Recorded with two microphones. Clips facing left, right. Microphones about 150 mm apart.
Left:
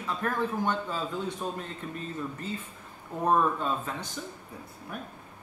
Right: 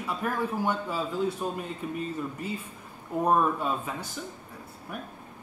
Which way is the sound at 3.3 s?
10° right (ahead or behind).